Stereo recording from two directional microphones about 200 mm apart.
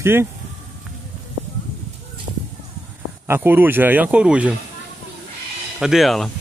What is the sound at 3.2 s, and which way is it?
Speech, 10° right (ahead or behind).